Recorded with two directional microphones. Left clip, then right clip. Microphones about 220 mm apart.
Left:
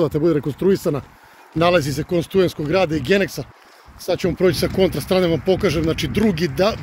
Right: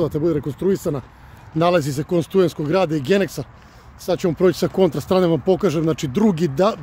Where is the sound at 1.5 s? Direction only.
5° right (ahead or behind).